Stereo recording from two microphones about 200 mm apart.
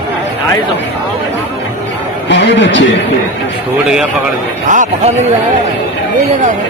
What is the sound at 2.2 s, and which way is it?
Speech, 60° left (ahead or behind).